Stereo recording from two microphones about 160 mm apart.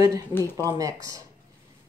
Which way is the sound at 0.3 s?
15° left (ahead or behind).